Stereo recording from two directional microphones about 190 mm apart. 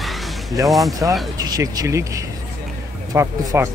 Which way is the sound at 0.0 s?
Centre (ahead or behind).